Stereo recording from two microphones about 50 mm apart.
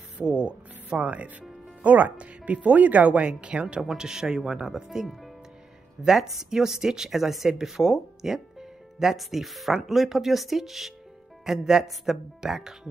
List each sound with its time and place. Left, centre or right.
0.2 s speech: right